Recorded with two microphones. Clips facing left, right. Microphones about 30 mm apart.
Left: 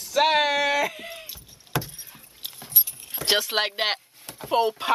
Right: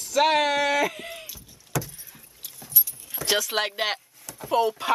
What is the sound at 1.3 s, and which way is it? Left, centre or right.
Door, left.